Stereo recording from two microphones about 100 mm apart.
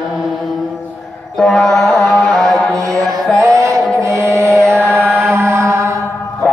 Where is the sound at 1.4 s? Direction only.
5° left (ahead or behind).